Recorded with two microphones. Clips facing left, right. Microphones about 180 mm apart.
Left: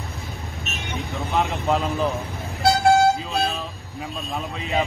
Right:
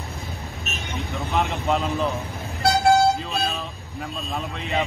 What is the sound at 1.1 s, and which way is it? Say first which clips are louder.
Speech: left 1 dB; centre (ahead or behind).